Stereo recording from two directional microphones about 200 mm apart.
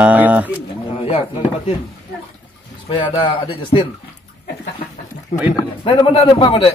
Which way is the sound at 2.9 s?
25° left (ahead or behind).